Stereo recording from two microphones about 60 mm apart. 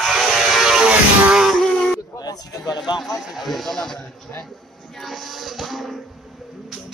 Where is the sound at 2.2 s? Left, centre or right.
Left.